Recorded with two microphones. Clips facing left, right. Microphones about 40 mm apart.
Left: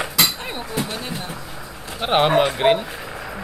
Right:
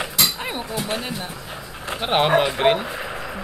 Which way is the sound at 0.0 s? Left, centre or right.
Centre.